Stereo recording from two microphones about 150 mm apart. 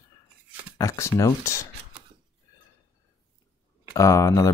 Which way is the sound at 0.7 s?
20° left (ahead or behind).